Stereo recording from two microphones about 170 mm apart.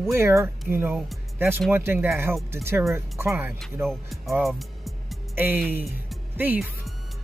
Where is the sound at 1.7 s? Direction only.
15° right (ahead or behind).